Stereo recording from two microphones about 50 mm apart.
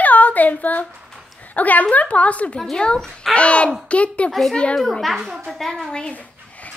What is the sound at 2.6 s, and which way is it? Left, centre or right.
A woman's voice, centre.